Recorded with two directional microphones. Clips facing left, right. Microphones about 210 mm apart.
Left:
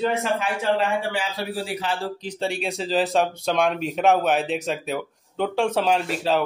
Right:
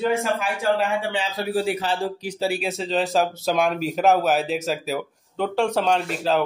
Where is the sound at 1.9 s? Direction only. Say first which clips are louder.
Right 3 dB; 15° right (ahead or behind).